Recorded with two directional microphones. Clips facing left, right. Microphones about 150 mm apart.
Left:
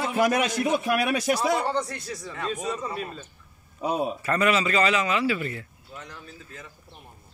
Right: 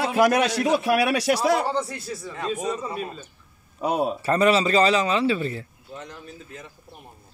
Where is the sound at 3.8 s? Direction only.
75° right (ahead or behind).